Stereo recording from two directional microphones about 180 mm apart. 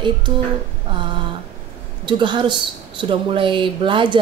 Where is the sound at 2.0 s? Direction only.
25° right (ahead or behind).